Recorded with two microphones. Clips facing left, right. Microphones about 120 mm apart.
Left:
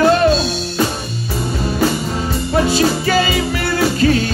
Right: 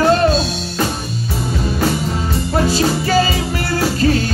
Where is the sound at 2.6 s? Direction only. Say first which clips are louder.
Left 1 dB; 35° right (ahead or behind).